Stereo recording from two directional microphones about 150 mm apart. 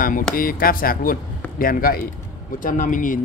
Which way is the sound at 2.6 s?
65° left (ahead or behind).